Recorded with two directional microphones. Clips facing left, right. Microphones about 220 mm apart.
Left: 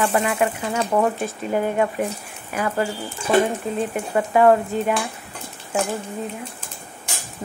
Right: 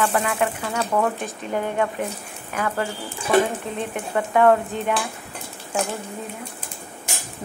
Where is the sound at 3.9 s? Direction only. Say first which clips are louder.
Even; 10° left (ahead or behind).